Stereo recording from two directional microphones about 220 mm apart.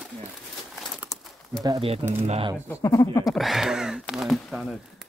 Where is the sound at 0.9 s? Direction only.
Centre (ahead or behind).